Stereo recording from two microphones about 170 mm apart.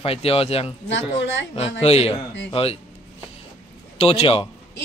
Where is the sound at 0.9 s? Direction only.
90° left.